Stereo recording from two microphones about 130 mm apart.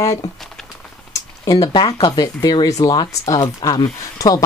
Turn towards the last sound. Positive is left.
turn(degrees=25)  # may be behind; listen again after turning